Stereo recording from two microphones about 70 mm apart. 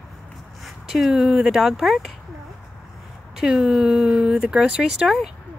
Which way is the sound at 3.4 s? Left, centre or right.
Centre.